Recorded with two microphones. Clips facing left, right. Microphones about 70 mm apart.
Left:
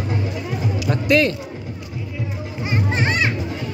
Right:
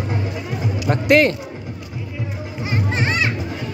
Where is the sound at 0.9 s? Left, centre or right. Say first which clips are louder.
Right 3 dB; right.